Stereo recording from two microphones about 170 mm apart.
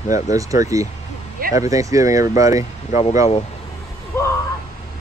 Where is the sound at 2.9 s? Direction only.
40° left (ahead or behind).